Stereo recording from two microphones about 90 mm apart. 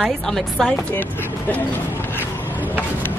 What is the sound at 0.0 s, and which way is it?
Speech, 5° left (ahead or behind).